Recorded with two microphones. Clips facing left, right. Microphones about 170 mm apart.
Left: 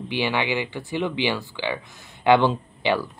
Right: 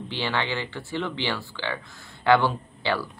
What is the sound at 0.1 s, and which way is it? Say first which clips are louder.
Speech: left 4 dB; 15° left (ahead or behind).